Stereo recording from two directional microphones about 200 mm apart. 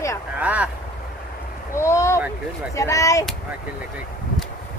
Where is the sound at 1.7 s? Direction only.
15° left (ahead or behind).